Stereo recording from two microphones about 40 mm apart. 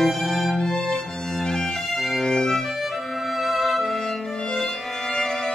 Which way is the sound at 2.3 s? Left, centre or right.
Centre.